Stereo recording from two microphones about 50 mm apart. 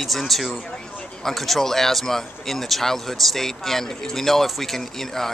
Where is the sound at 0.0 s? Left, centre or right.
Centre.